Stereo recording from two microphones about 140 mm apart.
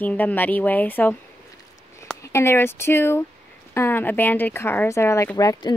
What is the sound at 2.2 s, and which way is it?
Speech, 20° left (ahead or behind).